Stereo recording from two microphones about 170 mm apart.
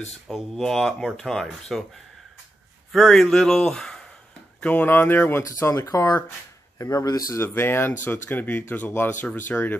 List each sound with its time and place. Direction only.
0.3 s speech: centre (ahead or behind)
2.9 s speech: centre (ahead or behind)